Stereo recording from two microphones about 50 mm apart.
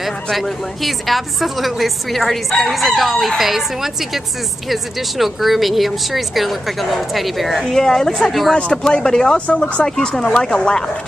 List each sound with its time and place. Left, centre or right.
0.0 s a woman's voice: centre
8.8 s speech: centre
9.8 s speech: centre